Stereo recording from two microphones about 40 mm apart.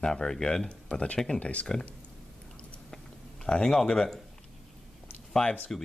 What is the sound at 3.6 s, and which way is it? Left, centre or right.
Speech, centre.